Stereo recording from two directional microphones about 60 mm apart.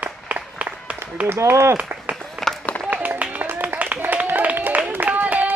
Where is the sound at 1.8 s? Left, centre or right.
Right.